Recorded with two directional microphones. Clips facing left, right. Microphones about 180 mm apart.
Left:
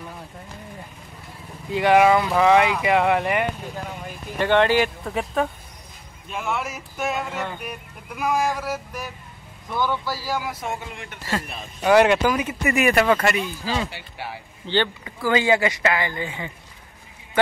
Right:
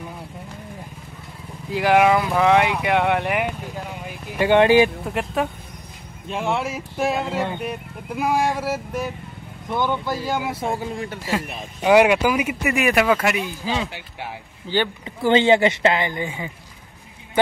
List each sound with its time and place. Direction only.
1.7 s speech: centre (ahead or behind)
3.7 s vehicle: 10° right (ahead or behind)
5.0 s speech: 5° right (ahead or behind)
6.2 s speech: 30° right (ahead or behind)
11.2 s speech: 15° right (ahead or behind)
15.0 s speech: 25° right (ahead or behind)